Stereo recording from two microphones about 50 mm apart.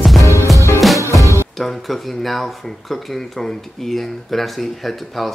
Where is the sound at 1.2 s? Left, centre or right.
Right.